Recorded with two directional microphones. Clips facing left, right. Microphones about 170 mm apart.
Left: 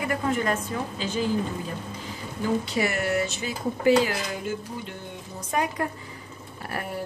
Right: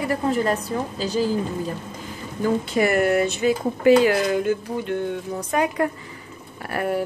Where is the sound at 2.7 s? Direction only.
50° right (ahead or behind).